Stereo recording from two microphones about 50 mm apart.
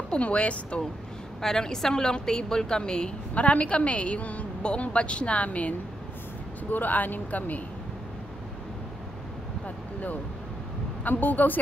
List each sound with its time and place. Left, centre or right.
0.1 s a woman's voice: left
1.4 s a woman's voice: centre; by 7.6 s left
11.1 s speech: left